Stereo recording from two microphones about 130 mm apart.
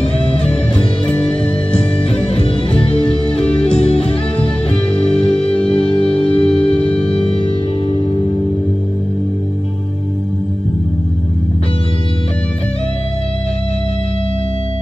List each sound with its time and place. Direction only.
0.3 s music: 45° left (ahead or behind)
1.1 s music: 10° left (ahead or behind)
1.8 s music: 45° left (ahead or behind)
5.4 s music: 45° left (ahead or behind)